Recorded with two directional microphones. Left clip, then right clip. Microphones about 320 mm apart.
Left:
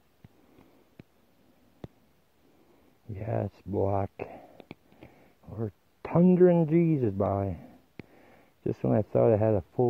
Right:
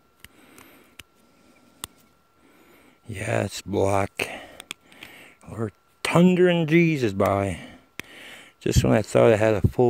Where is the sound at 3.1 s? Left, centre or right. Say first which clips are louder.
Right 7 dB; centre.